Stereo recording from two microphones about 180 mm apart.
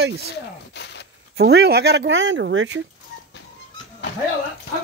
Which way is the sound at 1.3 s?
65° right (ahead or behind).